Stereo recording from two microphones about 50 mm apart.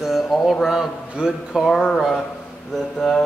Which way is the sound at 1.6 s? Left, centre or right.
Centre.